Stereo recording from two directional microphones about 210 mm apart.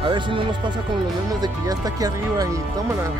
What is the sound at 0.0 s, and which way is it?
Speech, 20° right (ahead or behind).